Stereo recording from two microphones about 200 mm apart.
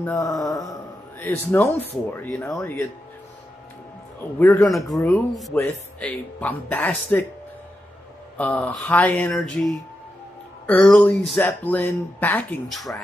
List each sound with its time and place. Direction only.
0.0 s speech: 15° left (ahead or behind)
4.4 s speech: 15° left (ahead or behind)
4.7 s speech: centre (ahead or behind)
8.4 s speech: 5° left (ahead or behind)